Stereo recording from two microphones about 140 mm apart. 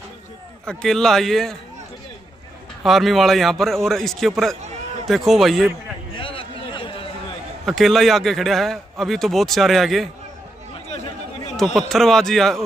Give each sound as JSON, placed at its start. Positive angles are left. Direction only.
{"t": 0.7, "sound": "a man's voice", "side_deg": 5}
{"t": 2.8, "sound": "a man's voice", "side_deg": 0}
{"t": 6.1, "sound": "a sound", "side_deg": 40}
{"t": 7.6, "sound": "a man's voice", "side_deg": 0}
{"t": 11.5, "sound": "a man's voice", "side_deg": 0}